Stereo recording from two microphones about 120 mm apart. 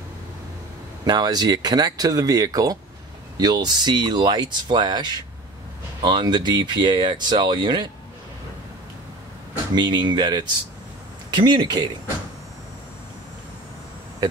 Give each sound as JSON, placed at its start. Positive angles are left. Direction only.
{"t": 1.0, "sound": "speech", "side_deg": -35}
{"t": 9.8, "sound": "speech", "side_deg": -40}